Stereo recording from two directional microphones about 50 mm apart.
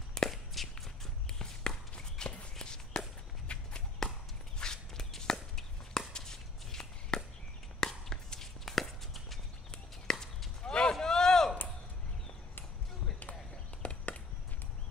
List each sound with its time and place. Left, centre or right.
0.3 s walk: centre
1.4 s walk: centre
4.0 s whip: centre
4.6 s chopping: centre
7.8 s walk: centre
10.1 s horse: centre
10.6 s a sound: centre
13.8 s chop: left